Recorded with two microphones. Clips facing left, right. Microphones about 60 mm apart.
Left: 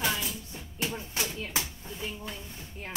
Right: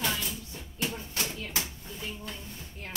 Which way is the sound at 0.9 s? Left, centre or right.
Left.